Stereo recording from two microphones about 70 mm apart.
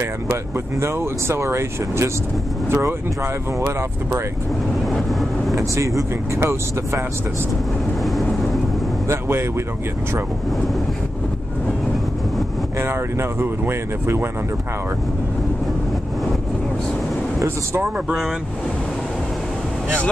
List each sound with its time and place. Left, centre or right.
0.3 s speech: right
5.6 s speech: right
8.0 s vehicle: centre
12.8 s speech: right